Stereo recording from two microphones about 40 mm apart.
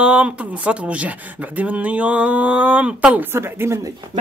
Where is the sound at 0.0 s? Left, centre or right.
Right.